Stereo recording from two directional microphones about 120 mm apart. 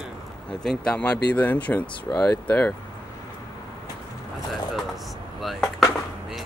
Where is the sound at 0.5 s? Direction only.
10° left (ahead or behind).